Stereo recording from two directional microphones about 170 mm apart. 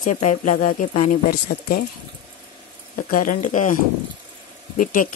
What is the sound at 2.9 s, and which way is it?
Speech, 55° left (ahead or behind).